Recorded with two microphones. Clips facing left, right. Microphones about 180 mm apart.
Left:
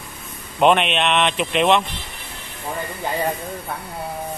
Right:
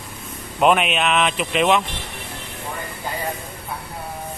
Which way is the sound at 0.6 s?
5° right (ahead or behind).